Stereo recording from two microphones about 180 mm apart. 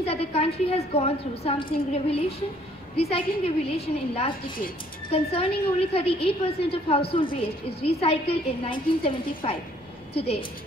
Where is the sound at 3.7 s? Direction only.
35° left (ahead or behind).